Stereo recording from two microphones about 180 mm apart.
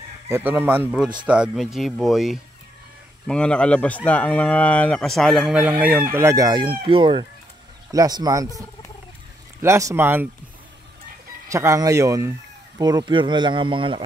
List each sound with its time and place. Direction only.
0.3 s speech: 10° right (ahead or behind)
9.6 s speech: 15° right (ahead or behind)
11.4 s speech: 15° right (ahead or behind)